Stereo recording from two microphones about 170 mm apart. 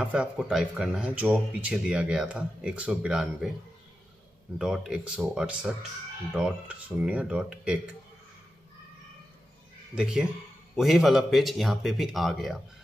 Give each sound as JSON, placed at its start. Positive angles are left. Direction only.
{"t": 0.0, "sound": "speech", "side_deg": -5}
{"t": 4.6, "sound": "speech", "side_deg": -5}
{"t": 9.9, "sound": "speech", "side_deg": -5}